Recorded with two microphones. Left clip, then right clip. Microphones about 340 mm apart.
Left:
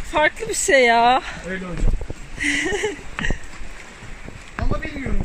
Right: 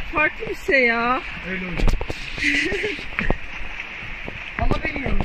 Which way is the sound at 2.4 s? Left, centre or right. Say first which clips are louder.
Right 1 dB; left.